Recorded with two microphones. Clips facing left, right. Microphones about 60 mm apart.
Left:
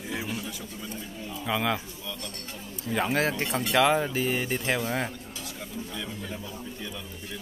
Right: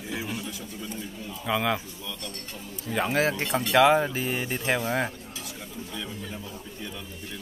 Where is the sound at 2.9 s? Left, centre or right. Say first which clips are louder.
Right 1 dB; centre.